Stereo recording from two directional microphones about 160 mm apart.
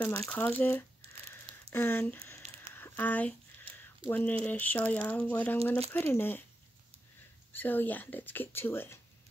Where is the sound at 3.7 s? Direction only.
35° right (ahead or behind).